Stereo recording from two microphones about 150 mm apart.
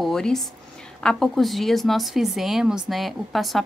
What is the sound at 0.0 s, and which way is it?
A woman's voice, 5° left (ahead or behind).